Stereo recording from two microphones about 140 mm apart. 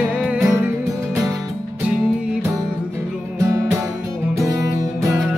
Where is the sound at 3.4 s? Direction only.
20° right (ahead or behind).